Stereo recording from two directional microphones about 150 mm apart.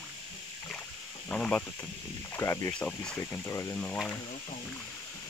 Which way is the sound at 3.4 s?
20° left (ahead or behind).